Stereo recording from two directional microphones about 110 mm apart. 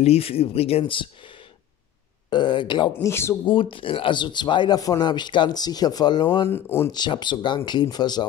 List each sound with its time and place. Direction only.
0.0 s speech: 65° left (ahead or behind)
2.2 s speech: 45° left (ahead or behind)
3.0 s speech: 25° left (ahead or behind)
3.7 s speech: 50° left (ahead or behind)
6.5 s speech: 20° left (ahead or behind)
6.9 s speech: 40° left (ahead or behind)